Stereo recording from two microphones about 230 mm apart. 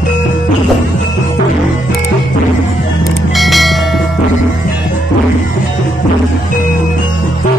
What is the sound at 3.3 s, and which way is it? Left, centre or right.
Bell, centre.